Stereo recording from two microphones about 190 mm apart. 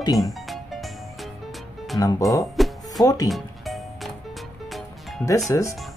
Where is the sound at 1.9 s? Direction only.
20° left (ahead or behind).